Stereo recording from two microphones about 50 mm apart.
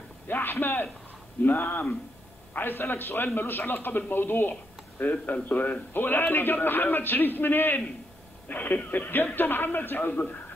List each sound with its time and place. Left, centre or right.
0.3 s a man's voice: left